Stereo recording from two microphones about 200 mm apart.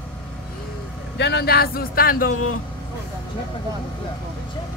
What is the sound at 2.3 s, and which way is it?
Speech, 90° left.